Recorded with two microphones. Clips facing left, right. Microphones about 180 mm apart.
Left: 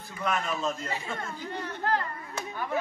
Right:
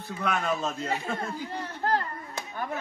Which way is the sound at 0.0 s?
65° right (ahead or behind).